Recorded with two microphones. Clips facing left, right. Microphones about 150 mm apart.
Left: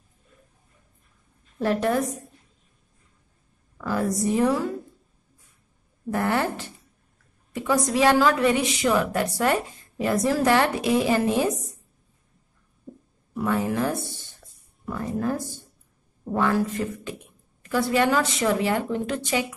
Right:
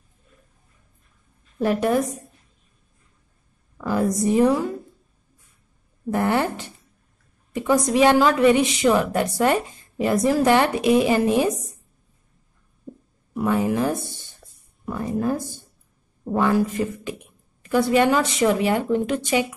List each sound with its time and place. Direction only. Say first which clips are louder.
1.6 s a woman's voice: right 2 dB; 15° right (ahead or behind)
3.7 s a woman's voice: right 3 dB; 20° right (ahead or behind)
6.0 s a woman's voice: right 3 dB; 20° right (ahead or behind)
13.3 s a woman's voice: right 3 dB; 15° right (ahead or behind)